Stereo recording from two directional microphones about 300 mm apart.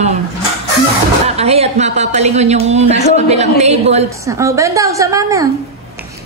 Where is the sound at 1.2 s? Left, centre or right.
Centre.